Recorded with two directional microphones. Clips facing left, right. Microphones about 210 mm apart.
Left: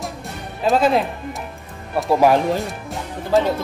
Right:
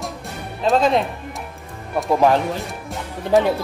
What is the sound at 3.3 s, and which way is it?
Speech, 15° right (ahead or behind).